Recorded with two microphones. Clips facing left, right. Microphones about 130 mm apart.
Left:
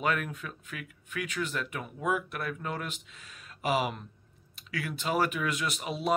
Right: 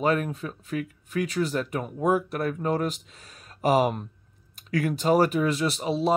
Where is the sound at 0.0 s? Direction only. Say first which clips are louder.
Right 6 dB; 35° right (ahead or behind).